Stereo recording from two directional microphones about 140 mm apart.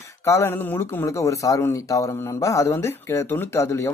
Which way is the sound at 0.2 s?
15° left (ahead or behind).